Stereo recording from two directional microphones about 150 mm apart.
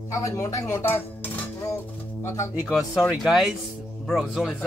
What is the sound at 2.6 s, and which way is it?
Speech, 5° right (ahead or behind).